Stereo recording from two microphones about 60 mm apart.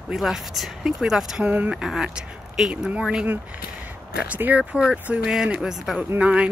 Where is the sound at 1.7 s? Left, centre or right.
Centre.